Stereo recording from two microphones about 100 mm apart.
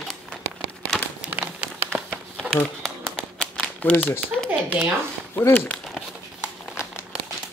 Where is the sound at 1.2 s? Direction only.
10° right (ahead or behind).